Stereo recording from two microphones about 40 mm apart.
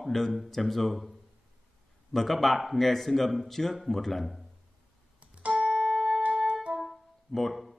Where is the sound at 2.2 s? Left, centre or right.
Centre.